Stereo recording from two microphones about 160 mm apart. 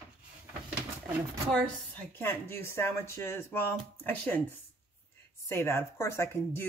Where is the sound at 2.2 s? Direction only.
15° left (ahead or behind).